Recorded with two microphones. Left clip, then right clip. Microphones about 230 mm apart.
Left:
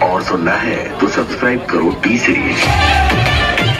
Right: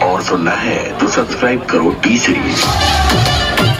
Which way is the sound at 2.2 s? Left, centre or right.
Right.